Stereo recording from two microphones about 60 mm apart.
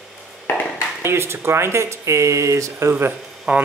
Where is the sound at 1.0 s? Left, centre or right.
Right.